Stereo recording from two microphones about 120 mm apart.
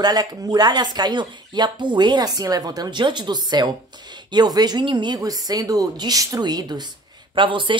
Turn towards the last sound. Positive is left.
turn(degrees=-45)  # may be behind; listen again after turning